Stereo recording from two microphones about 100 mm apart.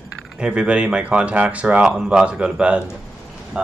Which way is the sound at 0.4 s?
10° right (ahead or behind).